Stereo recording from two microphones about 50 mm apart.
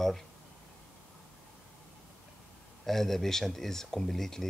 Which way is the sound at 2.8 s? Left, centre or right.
Centre.